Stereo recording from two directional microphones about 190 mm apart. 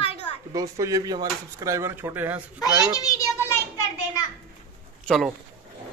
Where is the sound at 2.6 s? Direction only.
20° left (ahead or behind).